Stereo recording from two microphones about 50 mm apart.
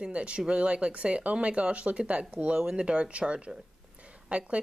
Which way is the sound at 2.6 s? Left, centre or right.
Centre.